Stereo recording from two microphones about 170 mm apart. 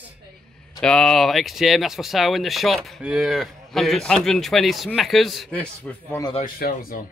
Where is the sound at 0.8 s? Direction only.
5° left (ahead or behind).